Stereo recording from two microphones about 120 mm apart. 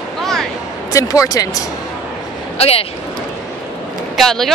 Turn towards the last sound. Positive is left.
turn(degrees=0)  # may be behind; listen again after turning